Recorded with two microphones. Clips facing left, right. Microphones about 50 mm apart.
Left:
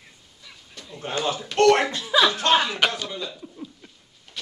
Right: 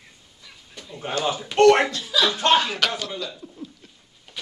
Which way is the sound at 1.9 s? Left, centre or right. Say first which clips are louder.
Left 3 dB; left.